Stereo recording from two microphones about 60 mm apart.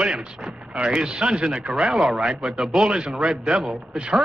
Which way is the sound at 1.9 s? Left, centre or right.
Centre.